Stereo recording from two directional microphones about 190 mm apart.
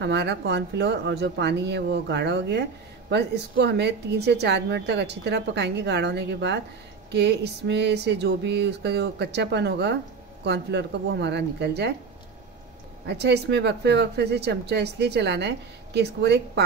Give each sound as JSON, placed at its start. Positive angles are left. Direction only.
{"t": 0.0, "sound": "speech", "side_deg": -65}
{"t": 13.0, "sound": "speech", "side_deg": -60}